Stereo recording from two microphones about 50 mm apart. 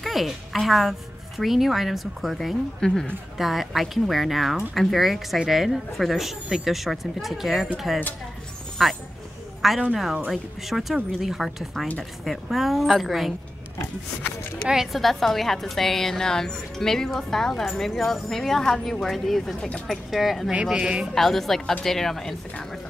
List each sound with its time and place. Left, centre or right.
0.0 s a woman's voice: centre
2.8 s speech: centre
3.3 s a woman's voice: centre
14.9 s a woman's voice: centre
20.7 s speech: centre
21.1 s a woman's voice: centre